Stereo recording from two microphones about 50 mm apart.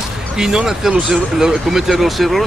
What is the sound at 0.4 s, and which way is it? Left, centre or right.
Speech, centre.